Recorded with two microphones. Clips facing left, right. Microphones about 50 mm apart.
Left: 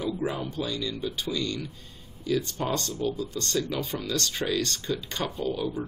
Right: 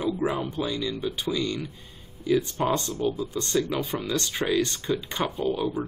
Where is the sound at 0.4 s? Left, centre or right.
Centre.